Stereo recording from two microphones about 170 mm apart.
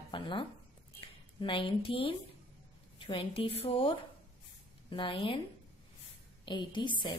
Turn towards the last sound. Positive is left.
turn(degrees=25)  # may be behind; listen again after turning